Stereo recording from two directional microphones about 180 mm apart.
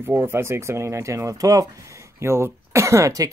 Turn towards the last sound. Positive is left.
turn(degrees=-20)  # may be behind; listen again after turning